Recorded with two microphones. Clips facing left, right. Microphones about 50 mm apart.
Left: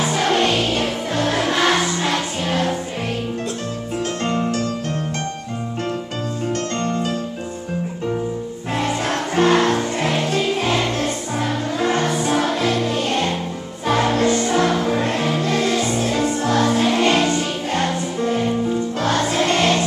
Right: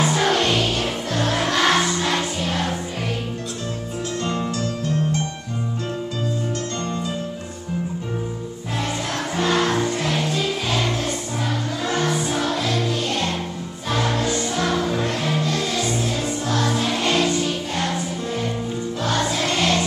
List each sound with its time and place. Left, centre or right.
0.0 s music: centre
4.2 s music: left
6.8 s music: left
8.7 s music: left
9.8 s music: left
10.2 s music: left
12.2 s music: left
14.1 s music: left
15.7 s music: left
16.0 s music: left
16.8 s music: left
17.3 s music: left
19.0 s music: left